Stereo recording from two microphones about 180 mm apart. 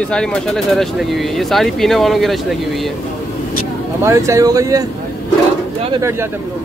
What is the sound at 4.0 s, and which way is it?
Speech, 15° right (ahead or behind).